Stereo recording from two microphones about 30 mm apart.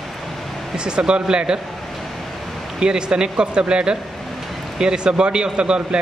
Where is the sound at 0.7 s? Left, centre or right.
Right.